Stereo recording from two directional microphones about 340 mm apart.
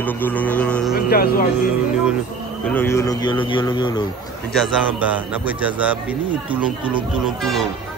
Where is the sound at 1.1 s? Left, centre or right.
Left.